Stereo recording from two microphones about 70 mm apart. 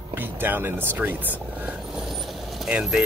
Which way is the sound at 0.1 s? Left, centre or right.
Right.